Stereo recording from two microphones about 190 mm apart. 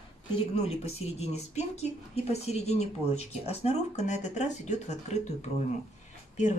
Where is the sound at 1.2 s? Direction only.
35° left (ahead or behind).